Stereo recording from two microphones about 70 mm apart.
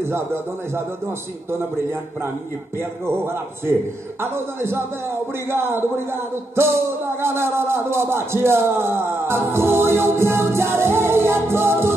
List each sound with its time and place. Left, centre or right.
0.0 s a man's voice: right